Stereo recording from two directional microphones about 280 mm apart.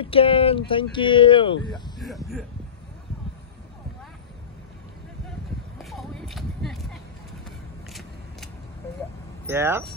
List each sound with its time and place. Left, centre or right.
0.0 s speech: centre
5.8 s a sound: centre
7.9 s vehicle: centre
9.5 s speech: centre